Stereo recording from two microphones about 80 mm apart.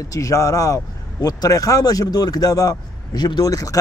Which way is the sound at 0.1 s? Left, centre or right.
Left.